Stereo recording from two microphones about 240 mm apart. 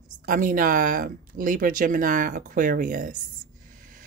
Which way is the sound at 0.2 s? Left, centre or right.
Right.